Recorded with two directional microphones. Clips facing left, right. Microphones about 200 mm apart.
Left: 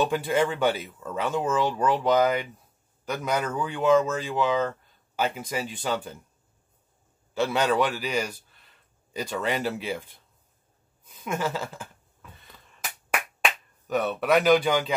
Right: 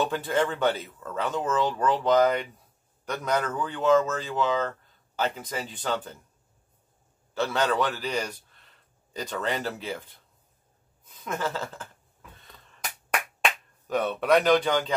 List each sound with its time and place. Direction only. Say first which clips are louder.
0.0 s speech: left 2 dB; 10° left (ahead or behind)
7.3 s speech: left 2 dB; 15° left (ahead or behind)
11.1 s speech: left 2 dB; 10° left (ahead or behind)
13.1 s finger snapping: even; centre (ahead or behind)